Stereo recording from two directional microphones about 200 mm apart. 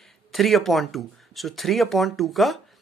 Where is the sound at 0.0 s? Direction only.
Centre (ahead or behind).